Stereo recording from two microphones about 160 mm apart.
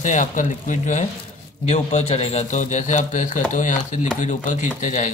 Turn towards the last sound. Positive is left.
turn(degrees=50)  # may be behind; listen again after turning